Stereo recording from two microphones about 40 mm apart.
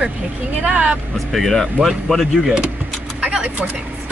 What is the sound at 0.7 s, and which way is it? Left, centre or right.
Speech, right.